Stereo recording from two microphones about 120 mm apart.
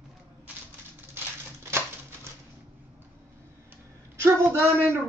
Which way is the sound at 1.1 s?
20° right (ahead or behind).